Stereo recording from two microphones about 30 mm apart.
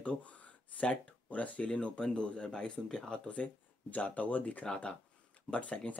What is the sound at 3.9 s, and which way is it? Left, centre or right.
Speech, left.